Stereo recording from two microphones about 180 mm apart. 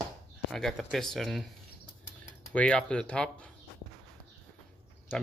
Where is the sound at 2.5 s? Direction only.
5° left (ahead or behind).